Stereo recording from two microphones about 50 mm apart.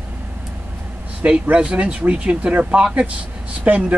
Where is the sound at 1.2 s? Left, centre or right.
Right.